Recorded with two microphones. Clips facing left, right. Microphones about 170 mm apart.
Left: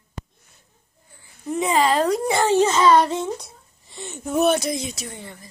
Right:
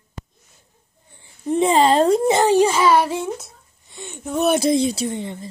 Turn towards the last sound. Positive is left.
turn(degrees=-25)  # may be behind; listen again after turning